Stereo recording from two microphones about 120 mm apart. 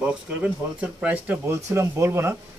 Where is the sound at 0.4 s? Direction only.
10° right (ahead or behind).